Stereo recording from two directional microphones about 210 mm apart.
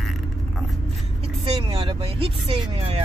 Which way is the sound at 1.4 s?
25° right (ahead or behind).